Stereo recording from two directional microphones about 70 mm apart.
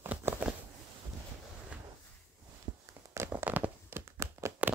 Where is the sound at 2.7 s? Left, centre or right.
Right.